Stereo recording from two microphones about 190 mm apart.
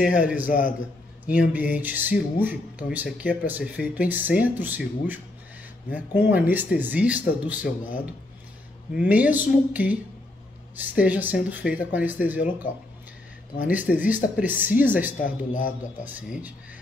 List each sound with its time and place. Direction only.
0.5 s a man's voice: 45° left (ahead or behind)
1.3 s speech: 10° right (ahead or behind)
7.6 s a man's voice: 45° left (ahead or behind)
8.9 s speech: 5° right (ahead or behind)
13.7 s speech: 10° right (ahead or behind)
15.1 s a man's voice: 45° left (ahead or behind)
16.0 s speech: 10° right (ahead or behind)